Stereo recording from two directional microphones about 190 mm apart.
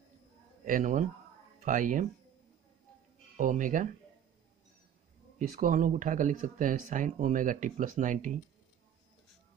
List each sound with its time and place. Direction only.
0.7 s speech: 45° right (ahead or behind)
3.3 s speech: 45° right (ahead or behind)
5.6 s speech: 45° right (ahead or behind)